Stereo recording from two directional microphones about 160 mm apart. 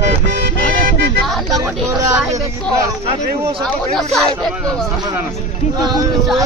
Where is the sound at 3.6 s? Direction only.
Centre (ahead or behind).